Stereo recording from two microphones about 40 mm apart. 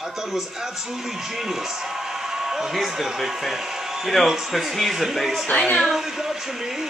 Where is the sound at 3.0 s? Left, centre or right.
Centre.